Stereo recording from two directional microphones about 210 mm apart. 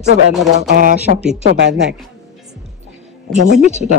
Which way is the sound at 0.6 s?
35° right (ahead or behind).